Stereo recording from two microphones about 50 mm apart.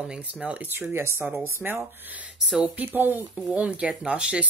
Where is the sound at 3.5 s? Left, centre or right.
Right.